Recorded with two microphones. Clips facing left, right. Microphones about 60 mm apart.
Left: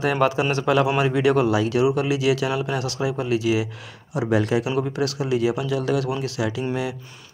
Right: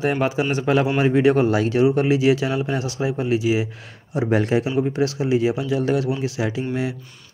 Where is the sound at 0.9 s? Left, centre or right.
Right.